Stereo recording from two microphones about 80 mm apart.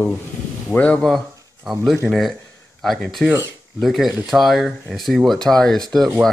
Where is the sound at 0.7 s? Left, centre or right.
Centre.